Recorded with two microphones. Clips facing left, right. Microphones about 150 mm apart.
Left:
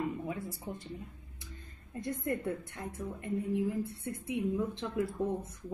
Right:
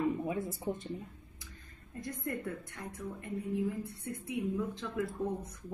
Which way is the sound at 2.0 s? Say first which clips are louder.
Left 4 dB; 25° left (ahead or behind).